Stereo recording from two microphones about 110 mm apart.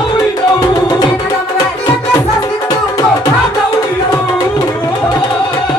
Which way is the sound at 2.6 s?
35° left (ahead or behind).